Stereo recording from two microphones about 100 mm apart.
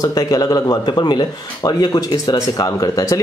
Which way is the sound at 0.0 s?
40° left (ahead or behind).